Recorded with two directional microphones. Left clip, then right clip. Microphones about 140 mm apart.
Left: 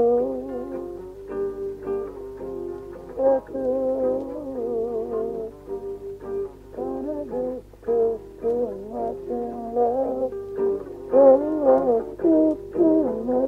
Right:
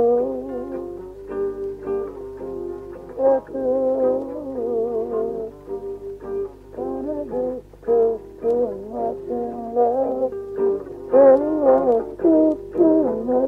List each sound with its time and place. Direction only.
0.0 s music: 30° left (ahead or behind)